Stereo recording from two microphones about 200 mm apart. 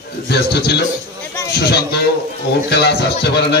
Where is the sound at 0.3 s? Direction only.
55° left (ahead or behind).